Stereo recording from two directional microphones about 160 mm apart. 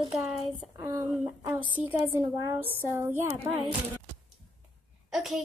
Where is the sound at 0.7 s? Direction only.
15° right (ahead or behind).